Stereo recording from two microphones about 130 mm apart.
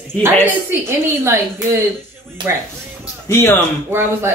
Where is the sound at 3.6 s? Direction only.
20° right (ahead or behind).